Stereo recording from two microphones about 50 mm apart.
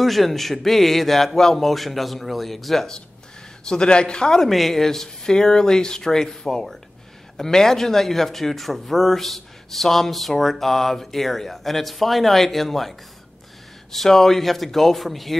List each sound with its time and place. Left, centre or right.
0.0 s speech: centre
3.6 s speech: centre
4.5 s speech: centre
13.9 s speech: centre